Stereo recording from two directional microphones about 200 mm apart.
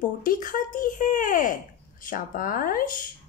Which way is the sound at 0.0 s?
45° left (ahead or behind).